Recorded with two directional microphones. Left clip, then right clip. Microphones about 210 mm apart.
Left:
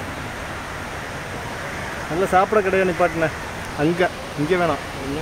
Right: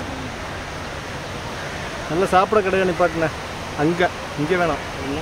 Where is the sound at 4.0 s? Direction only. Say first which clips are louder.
Even; 15° left (ahead or behind).